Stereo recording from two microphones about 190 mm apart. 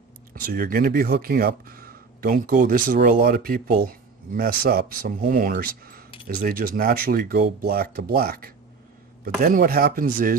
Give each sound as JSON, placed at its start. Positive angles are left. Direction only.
{"t": 0.3, "sound": "speech", "side_deg": -50}